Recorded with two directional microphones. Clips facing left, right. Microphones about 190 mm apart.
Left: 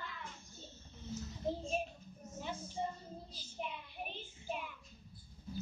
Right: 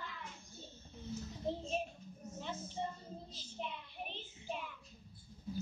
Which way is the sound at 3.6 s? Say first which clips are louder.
Left 1 dB; 5° left (ahead or behind).